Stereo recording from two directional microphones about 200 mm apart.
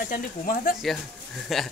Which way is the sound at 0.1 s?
45° left (ahead or behind).